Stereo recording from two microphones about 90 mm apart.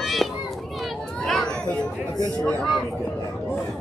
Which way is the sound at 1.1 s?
5° left (ahead or behind).